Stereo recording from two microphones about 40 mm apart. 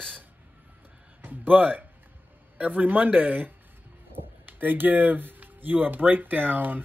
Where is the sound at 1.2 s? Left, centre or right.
Right.